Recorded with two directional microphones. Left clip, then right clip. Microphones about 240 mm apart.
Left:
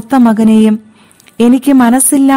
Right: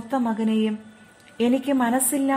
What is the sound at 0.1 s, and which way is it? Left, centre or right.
A woman's voice, left.